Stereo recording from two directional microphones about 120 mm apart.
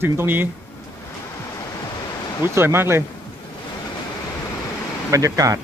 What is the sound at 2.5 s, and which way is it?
Speech, 20° right (ahead or behind).